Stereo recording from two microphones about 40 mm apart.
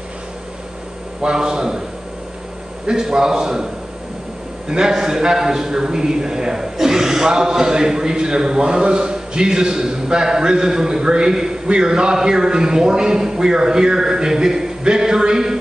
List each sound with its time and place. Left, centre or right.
1.2 s a man's voice: centre
2.9 s a man's voice: centre
4.6 s a man's voice: centre